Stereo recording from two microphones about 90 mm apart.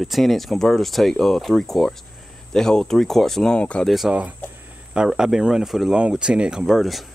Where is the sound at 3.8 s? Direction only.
Centre (ahead or behind).